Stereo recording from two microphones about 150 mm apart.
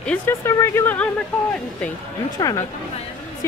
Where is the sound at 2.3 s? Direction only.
25° left (ahead or behind).